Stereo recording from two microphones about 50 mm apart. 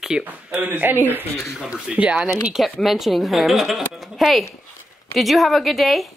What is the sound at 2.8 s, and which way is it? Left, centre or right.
A woman's voice, centre.